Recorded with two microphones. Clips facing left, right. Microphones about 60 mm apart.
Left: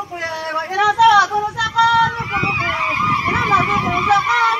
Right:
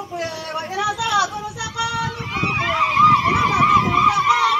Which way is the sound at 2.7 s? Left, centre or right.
Left.